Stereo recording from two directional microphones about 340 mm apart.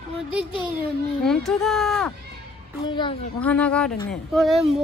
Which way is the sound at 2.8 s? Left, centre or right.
Centre.